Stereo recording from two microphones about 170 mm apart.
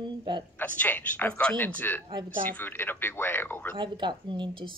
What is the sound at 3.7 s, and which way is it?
Speech, 25° right (ahead or behind).